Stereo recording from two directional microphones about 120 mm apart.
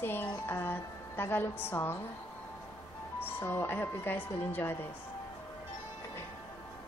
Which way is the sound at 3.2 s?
15° left (ahead or behind).